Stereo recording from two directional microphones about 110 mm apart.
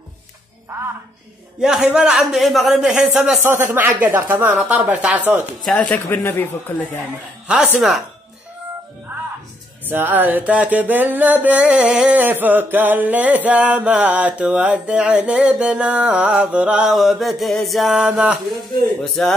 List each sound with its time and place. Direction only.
1.6 s a man's voice: 5° right (ahead or behind)
3.4 s music: 20° right (ahead or behind)
5.7 s speech: 10° left (ahead or behind)
7.4 s music: 10° right (ahead or behind)
9.8 s music: 20° right (ahead or behind)
16.9 s a man's voice: centre (ahead or behind)
19.0 s a man's voice: centre (ahead or behind)